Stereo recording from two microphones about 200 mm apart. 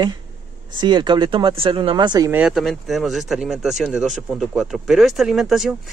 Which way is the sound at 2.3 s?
5° right (ahead or behind).